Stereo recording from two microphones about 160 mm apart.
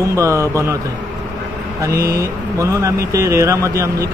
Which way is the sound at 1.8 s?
20° right (ahead or behind).